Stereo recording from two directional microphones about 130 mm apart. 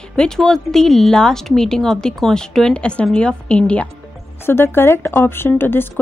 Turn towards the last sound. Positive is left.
turn(degrees=15)  # may be behind; listen again after turning